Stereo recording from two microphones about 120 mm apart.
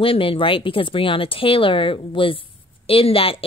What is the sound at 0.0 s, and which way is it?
Speech, 50° left (ahead or behind).